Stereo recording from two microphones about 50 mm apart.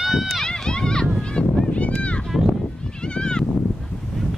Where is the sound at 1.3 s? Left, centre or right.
Left.